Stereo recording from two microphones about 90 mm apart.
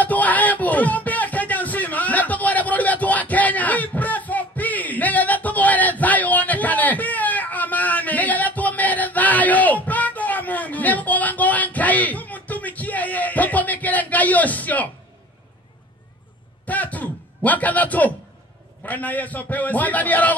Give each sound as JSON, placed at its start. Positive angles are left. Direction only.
{"t": 0.0, "sound": "music", "side_deg": 15}
{"t": 16.6, "sound": "a sound", "side_deg": 15}
{"t": 18.8, "sound": "a man's voice", "side_deg": 15}